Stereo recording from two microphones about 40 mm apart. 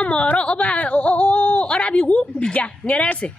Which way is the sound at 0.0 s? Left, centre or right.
Left.